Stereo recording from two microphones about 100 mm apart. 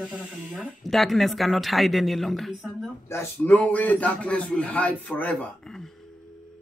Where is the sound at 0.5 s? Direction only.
Centre (ahead or behind).